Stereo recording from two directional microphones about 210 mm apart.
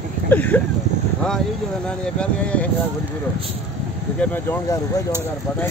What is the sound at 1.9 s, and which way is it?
Speech, 5° left (ahead or behind).